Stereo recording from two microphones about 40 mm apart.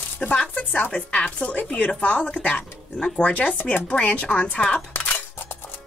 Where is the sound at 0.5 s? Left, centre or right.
Left.